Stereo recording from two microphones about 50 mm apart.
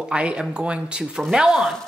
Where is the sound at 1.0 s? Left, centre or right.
Centre.